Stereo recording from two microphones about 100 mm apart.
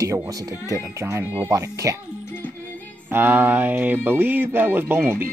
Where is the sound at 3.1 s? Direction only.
20° right (ahead or behind).